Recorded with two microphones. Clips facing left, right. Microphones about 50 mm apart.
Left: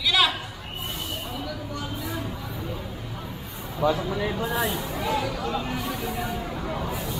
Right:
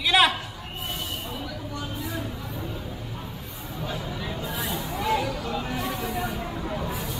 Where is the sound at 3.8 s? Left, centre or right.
Left.